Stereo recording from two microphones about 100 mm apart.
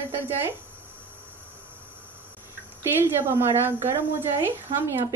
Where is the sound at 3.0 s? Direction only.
25° right (ahead or behind).